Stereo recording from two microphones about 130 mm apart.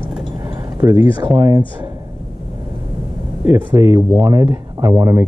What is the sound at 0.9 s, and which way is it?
Speech, 20° right (ahead or behind).